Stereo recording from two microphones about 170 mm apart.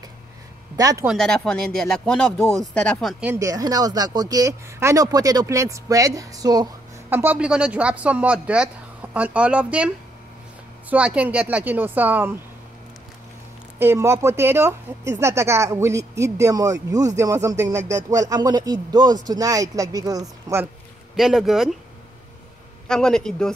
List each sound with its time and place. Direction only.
0.7 s speech: 20° right (ahead or behind)
1.0 s speech: 5° left (ahead or behind)
3.3 s speech: 20° right (ahead or behind)
10.9 s speech: 10° right (ahead or behind)
13.7 s speech: 15° right (ahead or behind)
21.2 s speech: centre (ahead or behind)
22.8 s speech: 5° left (ahead or behind)